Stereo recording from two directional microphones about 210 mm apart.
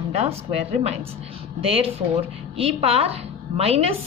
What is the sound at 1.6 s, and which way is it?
A woman's voice, 25° right (ahead or behind).